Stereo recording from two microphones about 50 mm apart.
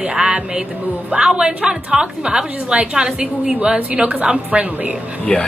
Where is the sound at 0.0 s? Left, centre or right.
Centre.